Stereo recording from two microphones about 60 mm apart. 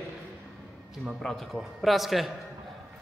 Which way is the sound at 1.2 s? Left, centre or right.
Centre.